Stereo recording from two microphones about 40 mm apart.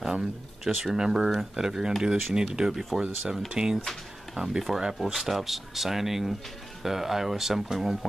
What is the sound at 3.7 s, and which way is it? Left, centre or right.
Speech, centre.